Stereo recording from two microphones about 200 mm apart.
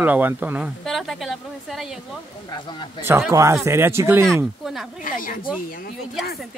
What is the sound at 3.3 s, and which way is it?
Speech, 15° right (ahead or behind).